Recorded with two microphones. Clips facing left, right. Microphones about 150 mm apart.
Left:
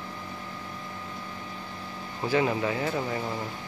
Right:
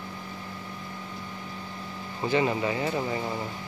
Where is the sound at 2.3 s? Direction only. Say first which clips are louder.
Even; centre (ahead or behind).